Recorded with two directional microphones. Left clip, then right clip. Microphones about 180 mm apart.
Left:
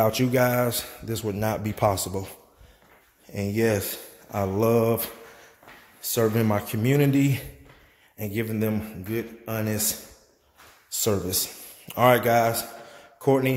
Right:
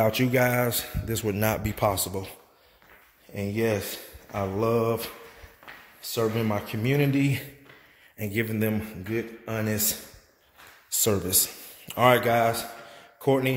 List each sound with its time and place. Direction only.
0.0 s a man's voice: centre (ahead or behind)
1.6 s speech: 10° left (ahead or behind)
3.3 s speech: 15° left (ahead or behind)
8.2 s a man's voice: centre (ahead or behind)